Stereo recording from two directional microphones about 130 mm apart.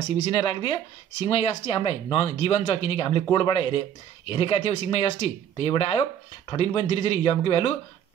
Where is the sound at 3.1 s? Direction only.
35° left (ahead or behind).